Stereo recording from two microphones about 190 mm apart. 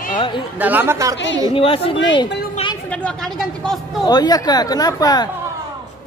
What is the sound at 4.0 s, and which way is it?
A man's voice, 20° left (ahead or behind).